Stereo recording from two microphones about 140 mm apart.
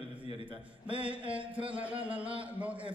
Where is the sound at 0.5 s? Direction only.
40° right (ahead or behind).